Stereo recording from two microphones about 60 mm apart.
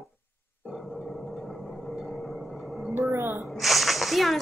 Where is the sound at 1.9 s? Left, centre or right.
Centre.